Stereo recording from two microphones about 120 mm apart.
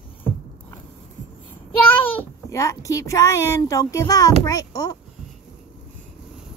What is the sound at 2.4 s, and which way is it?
Speech, 25° left (ahead or behind).